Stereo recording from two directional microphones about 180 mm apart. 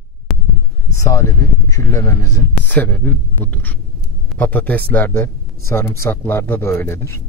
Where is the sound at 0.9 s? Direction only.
15° left (ahead or behind).